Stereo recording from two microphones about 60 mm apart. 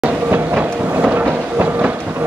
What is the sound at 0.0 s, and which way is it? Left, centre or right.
Vehicle, centre.